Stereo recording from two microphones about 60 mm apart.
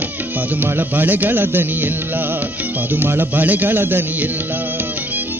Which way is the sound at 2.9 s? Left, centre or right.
Right.